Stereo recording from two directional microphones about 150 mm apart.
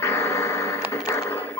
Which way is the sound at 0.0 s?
20° left (ahead or behind).